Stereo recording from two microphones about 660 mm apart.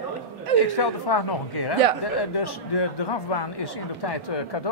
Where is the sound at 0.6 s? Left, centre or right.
Left.